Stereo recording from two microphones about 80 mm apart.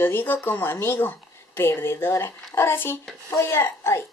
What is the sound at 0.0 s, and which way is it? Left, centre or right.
Speech, left.